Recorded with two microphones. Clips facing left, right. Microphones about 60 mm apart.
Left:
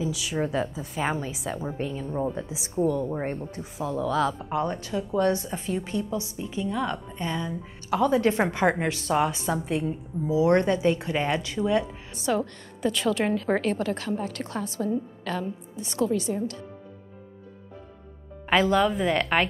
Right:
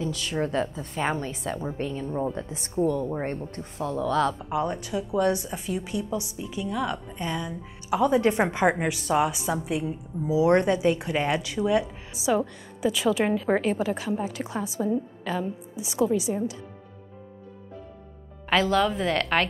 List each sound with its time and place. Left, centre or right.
0.0 s a woman's voice: centre
4.5 s a woman's voice: centre
5.5 s a woman's voice: centre
6.4 s a woman's voice: centre
7.4 s a woman's voice: centre
10.3 s a woman's voice: right
18.5 s speech: centre